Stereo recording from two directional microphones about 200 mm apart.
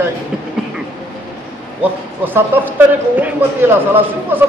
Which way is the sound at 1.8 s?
10° right (ahead or behind).